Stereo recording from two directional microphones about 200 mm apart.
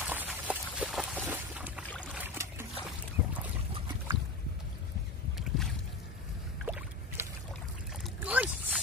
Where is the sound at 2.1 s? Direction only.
10° right (ahead or behind).